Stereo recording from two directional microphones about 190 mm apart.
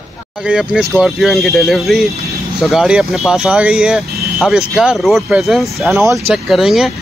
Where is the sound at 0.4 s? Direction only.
5° right (ahead or behind).